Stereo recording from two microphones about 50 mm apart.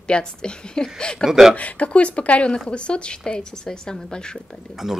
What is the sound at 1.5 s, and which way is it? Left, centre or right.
A woman's voice, left.